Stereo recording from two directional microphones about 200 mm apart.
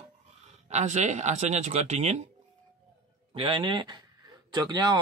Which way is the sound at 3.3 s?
25° right (ahead or behind).